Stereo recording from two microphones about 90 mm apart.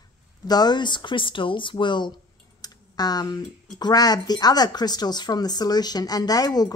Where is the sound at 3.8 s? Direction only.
50° left (ahead or behind).